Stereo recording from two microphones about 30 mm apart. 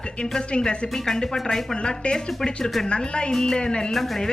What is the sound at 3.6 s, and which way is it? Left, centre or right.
Speech, left.